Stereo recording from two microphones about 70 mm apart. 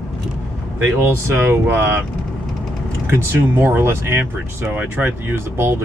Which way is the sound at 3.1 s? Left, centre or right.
Right.